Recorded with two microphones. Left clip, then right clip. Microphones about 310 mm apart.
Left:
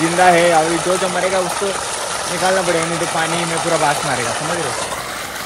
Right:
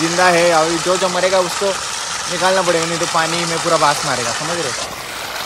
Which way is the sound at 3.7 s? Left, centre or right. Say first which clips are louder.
Right 3 dB; centre.